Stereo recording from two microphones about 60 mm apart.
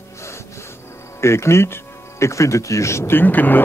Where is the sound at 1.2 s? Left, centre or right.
Left.